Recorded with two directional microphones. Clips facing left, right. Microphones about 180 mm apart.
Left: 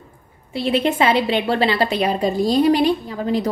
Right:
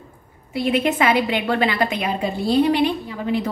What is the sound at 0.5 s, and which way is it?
A woman's voice, 30° left (ahead or behind).